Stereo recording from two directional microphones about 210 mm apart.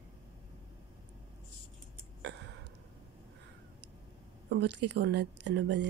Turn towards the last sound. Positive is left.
turn(degrees=-55)  # may be behind; listen again after turning